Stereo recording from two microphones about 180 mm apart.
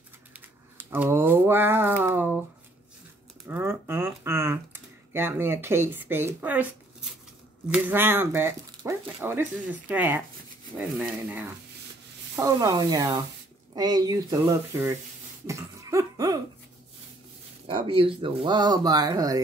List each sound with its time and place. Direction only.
0.3 s a sound: 10° right (ahead or behind)
3.4 s a sound: 10° right (ahead or behind)
7.7 s speech: 10° right (ahead or behind)
12.4 s speech: 20° right (ahead or behind)
15.4 s cough: 15° right (ahead or behind)
17.6 s speech: 30° right (ahead or behind)